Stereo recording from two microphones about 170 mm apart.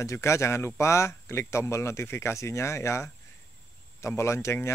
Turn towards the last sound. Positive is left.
turn(degrees=15)  # may be behind; listen again after turning